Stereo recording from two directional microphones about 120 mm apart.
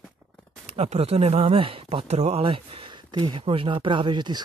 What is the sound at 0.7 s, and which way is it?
Speech, 55° right (ahead or behind).